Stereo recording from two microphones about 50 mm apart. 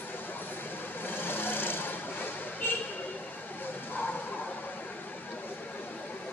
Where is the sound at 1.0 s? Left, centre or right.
Left.